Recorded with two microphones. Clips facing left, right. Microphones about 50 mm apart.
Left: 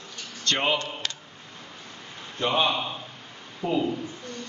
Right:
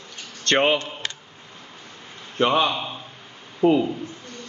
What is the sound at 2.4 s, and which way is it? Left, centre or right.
A man's voice, right.